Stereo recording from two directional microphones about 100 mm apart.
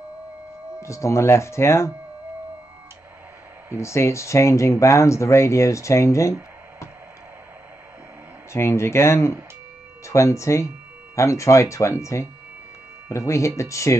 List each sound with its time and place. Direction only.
0.8 s speech: 30° left (ahead or behind)
3.7 s speech: 30° left (ahead or behind)
8.5 s speech: 25° left (ahead or behind)